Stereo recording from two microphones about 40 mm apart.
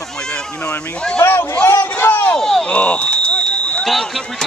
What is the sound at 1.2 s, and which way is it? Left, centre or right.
A man's voice, left.